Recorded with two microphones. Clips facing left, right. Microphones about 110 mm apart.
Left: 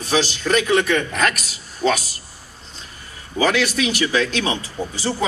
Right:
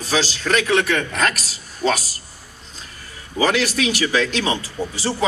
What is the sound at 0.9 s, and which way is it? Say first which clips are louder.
A woman's voice: left 1 dB; 35° right (ahead or behind).